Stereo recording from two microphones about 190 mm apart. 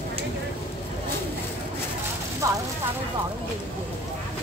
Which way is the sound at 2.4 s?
15° right (ahead or behind).